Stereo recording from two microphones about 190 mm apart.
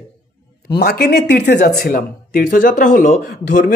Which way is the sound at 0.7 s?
55° left (ahead or behind).